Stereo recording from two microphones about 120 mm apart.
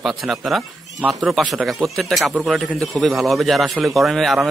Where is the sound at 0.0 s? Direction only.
Centre (ahead or behind).